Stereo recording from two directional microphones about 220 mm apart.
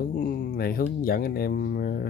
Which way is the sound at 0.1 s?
40° left (ahead or behind).